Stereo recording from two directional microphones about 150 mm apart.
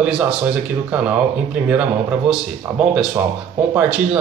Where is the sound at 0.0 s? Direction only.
5° right (ahead or behind).